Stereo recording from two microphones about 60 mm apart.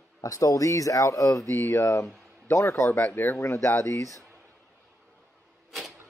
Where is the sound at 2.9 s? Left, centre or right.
Left.